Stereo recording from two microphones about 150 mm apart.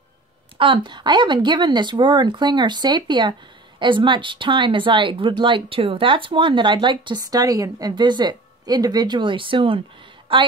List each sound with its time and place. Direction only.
0.6 s speech: 35° right (ahead or behind)